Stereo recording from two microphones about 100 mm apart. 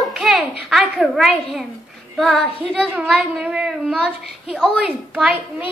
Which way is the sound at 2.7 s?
10° right (ahead or behind).